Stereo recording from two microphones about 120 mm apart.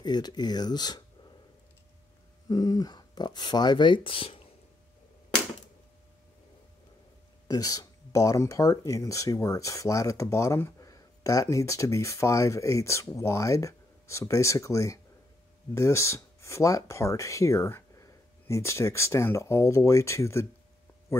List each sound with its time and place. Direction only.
0.0 s speech: 35° left (ahead or behind)
2.4 s speech: 30° left (ahead or behind); by 4.5 s 50° left (ahead or behind)
7.4 s speech: 30° left (ahead or behind)